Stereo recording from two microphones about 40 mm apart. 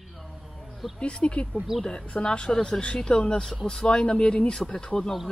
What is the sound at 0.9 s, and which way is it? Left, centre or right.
Speech, left.